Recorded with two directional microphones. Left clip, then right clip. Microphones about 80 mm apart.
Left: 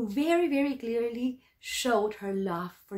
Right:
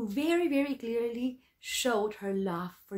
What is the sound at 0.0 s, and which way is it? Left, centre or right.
Speech, right.